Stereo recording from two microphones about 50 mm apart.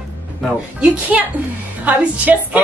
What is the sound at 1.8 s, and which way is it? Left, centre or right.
Speech, right.